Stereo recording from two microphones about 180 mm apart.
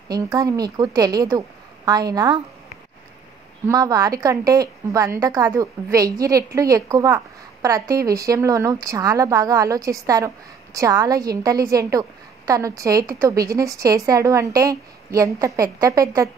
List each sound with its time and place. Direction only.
0.1 s a woman's voice: 20° right (ahead or behind)
3.6 s a woman's voice: 20° right (ahead or behind)